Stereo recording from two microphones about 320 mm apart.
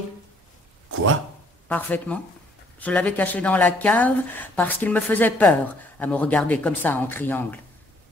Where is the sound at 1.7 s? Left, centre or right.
Centre.